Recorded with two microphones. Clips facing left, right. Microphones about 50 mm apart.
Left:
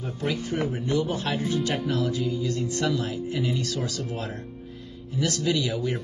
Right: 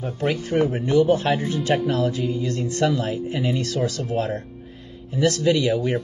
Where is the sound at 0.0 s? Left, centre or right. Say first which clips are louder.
Right 5 dB; right.